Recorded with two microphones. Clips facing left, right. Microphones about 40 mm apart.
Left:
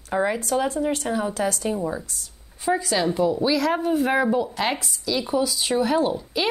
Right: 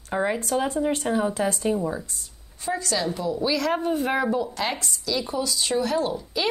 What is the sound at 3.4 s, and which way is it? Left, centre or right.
A woman's voice, centre.